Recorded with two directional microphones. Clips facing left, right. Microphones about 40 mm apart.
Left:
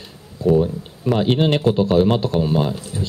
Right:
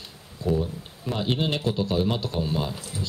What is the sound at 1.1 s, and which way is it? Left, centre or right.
Speech, left.